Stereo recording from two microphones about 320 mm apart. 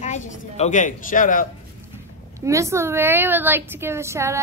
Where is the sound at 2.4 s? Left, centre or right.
Centre.